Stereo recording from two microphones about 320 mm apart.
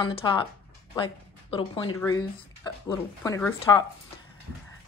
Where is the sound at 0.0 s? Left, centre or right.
Centre.